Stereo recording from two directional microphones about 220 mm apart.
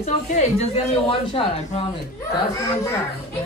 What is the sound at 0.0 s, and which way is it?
Speech, 30° left (ahead or behind).